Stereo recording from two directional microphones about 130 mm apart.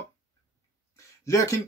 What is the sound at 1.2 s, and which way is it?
Speech, 25° left (ahead or behind).